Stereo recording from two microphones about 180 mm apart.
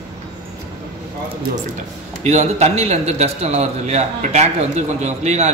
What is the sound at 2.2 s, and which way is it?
A man's voice, 40° right (ahead or behind).